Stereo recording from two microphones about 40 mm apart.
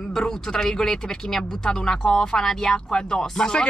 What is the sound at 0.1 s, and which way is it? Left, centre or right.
Speech, centre.